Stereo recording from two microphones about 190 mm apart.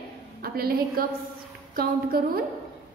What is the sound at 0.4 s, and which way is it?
A woman's voice, 50° right (ahead or behind).